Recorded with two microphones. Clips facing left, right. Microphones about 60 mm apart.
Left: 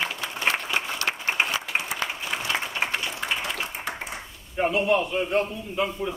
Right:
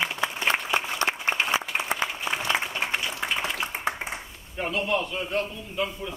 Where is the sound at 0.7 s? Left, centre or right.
Right.